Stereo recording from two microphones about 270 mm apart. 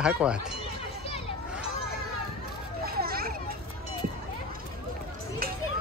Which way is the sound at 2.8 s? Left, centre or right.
Right.